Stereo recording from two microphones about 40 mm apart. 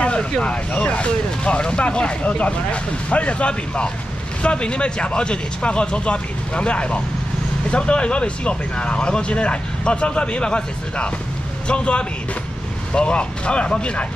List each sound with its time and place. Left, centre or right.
0.0 s speech: left